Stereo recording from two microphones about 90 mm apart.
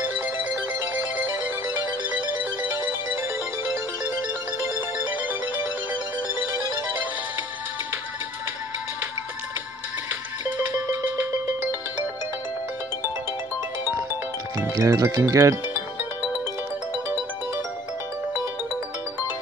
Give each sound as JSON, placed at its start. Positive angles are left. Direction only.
{"t": 0.0, "sound": "music", "side_deg": -20}
{"t": 1.1, "sound": "ringtone", "side_deg": -20}
{"t": 4.7, "sound": "music", "side_deg": -20}
{"t": 10.4, "sound": "music", "side_deg": -25}
{"t": 14.8, "sound": "speech", "side_deg": -35}